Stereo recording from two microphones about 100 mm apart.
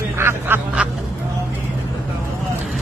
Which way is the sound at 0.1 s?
25° right (ahead or behind).